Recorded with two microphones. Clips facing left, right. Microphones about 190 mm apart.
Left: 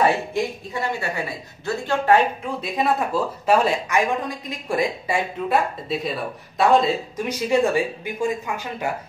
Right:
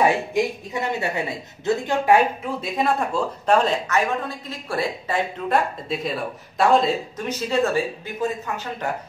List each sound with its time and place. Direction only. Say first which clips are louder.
0.0 s speech: right 1 dB; 15° right (ahead or behind)
2.4 s speech: even; centre (ahead or behind)
7.2 s speech: left 2 dB; 15° left (ahead or behind)